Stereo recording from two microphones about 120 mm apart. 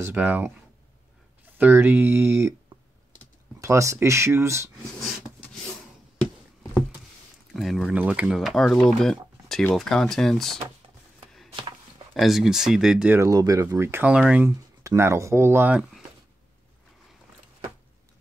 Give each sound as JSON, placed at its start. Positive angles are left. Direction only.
{"t": 0.0, "sound": "speech", "side_deg": -15}
{"t": 3.6, "sound": "speech", "side_deg": -25}
{"t": 7.5, "sound": "speech", "side_deg": 0}
{"t": 7.9, "sound": "speech", "side_deg": -10}
{"t": 12.1, "sound": "speech", "side_deg": 0}
{"t": 13.1, "sound": "speech", "side_deg": -25}
{"t": 14.8, "sound": "speech", "side_deg": -25}